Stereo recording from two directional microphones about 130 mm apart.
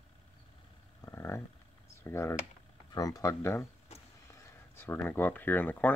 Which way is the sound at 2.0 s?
20° left (ahead or behind).